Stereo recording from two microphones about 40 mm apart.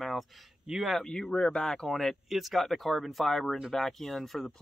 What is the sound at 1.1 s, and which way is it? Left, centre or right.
Speech, centre.